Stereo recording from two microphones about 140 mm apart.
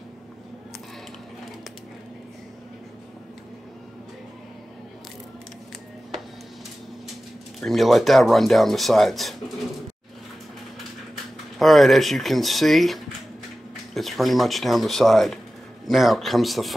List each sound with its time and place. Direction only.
7.6 s speech: centre (ahead or behind)
11.5 s speech: centre (ahead or behind)